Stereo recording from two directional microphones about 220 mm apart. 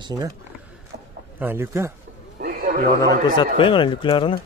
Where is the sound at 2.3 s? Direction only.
40° right (ahead or behind).